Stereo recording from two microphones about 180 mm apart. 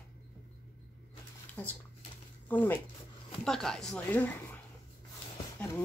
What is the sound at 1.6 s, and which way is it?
Speech, 10° left (ahead or behind).